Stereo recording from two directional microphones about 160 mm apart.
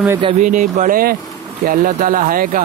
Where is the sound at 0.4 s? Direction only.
50° right (ahead or behind).